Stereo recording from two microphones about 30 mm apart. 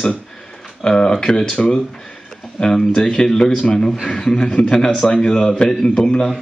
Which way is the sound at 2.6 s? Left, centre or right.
Left.